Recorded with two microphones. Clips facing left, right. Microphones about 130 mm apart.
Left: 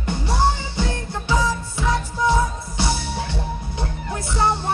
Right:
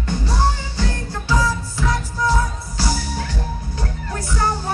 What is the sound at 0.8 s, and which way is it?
Music, 20° left (ahead or behind).